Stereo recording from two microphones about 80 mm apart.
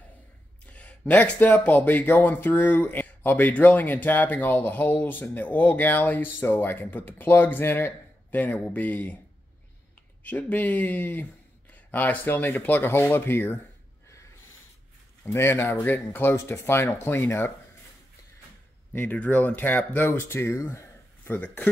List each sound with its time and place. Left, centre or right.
0.7 s speech: centre
10.2 s speech: centre
15.2 s speech: left
18.9 s speech: centre